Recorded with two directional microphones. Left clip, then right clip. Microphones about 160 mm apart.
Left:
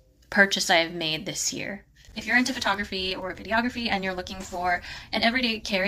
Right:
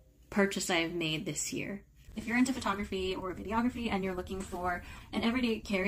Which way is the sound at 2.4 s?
10° right (ahead or behind).